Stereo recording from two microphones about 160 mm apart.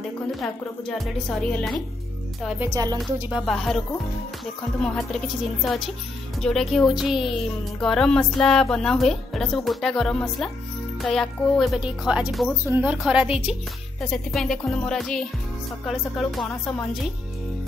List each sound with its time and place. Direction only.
0.4 s speech: centre (ahead or behind)
2.7 s speech: 25° right (ahead or behind)
3.2 s speech: 5° right (ahead or behind)
14.1 s speech: 5° left (ahead or behind)